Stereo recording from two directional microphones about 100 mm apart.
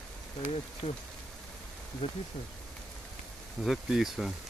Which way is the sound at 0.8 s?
90° left.